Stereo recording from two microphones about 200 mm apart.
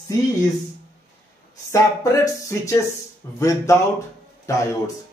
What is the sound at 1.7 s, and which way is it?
A man's voice, 15° left (ahead or behind).